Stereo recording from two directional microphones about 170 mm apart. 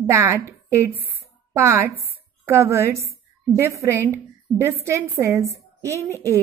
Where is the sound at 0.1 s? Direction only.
15° right (ahead or behind).